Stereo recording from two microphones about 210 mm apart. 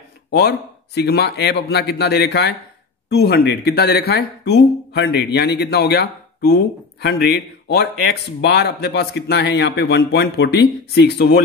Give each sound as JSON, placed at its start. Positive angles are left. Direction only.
{"t": 0.3, "sound": "speech", "side_deg": 50}